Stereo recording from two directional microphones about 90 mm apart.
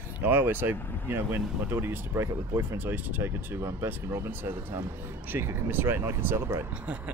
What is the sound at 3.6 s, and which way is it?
Speech, 35° right (ahead or behind).